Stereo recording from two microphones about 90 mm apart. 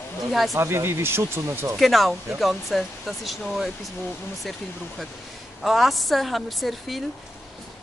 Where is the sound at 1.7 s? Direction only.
Centre (ahead or behind).